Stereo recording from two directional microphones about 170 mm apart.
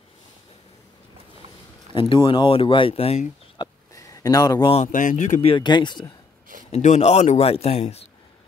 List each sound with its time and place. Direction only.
2.0 s speech: 30° left (ahead or behind)
3.9 s a sound: 20° left (ahead or behind)
4.7 s speech: 50° left (ahead or behind)
5.5 s speech: 25° left (ahead or behind)
6.7 s speech: 40° left (ahead or behind)